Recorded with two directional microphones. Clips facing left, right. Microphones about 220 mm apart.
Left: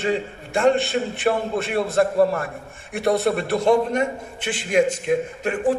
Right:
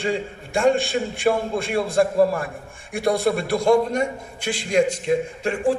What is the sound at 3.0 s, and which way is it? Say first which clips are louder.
Speech: even; 10° right (ahead or behind).